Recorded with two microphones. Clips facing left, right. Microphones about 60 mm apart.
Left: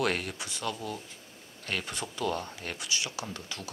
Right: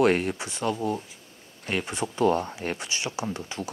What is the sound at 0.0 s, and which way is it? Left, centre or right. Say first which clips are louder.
Speech: right 8 dB; right.